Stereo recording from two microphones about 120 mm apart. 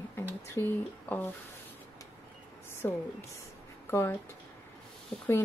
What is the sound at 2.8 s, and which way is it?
Speech, 20° left (ahead or behind).